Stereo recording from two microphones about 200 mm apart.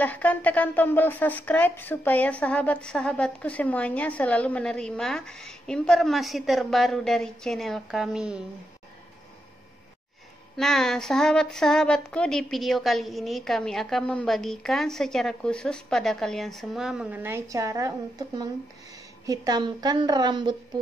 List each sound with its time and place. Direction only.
0.0 s speech: 5° left (ahead or behind)
10.5 s a woman's voice: centre (ahead or behind); by 20.5 s 20° right (ahead or behind)